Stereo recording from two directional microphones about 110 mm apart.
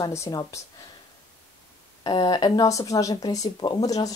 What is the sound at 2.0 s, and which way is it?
Speech, 40° left (ahead or behind).